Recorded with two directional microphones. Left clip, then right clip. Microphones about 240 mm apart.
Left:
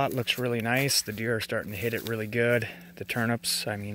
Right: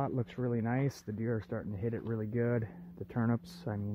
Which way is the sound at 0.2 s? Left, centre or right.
Centre.